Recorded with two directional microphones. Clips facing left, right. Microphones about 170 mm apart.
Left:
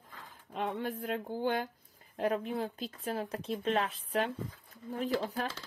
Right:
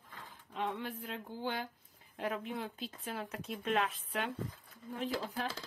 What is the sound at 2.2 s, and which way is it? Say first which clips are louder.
Speech: left 6 dB; 40° left (ahead or behind).